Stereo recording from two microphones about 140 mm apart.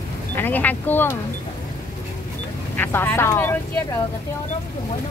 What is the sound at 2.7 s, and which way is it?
Speech, 15° left (ahead or behind).